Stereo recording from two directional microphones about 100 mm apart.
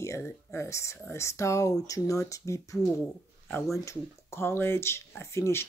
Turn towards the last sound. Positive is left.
turn(degrees=30)  # may be behind; listen again after turning